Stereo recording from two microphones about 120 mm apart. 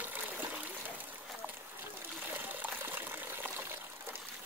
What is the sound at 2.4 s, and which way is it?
Water, 15° right (ahead or behind).